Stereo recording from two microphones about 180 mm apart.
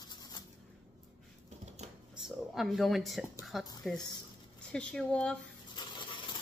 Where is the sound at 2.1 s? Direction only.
Centre (ahead or behind).